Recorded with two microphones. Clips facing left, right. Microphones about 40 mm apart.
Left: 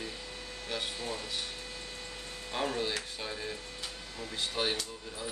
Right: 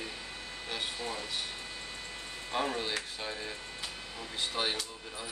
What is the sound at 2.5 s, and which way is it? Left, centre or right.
Speech, centre.